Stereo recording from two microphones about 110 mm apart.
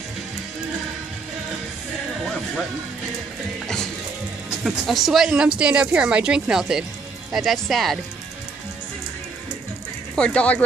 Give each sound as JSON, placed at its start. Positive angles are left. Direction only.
{"t": 4.6, "sound": "a woman's voice", "side_deg": 0}
{"t": 10.1, "sound": "speech", "side_deg": 10}